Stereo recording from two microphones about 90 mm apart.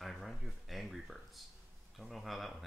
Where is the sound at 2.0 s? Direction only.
Centre (ahead or behind).